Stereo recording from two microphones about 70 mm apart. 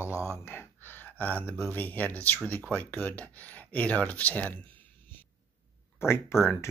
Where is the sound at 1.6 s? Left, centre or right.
Left.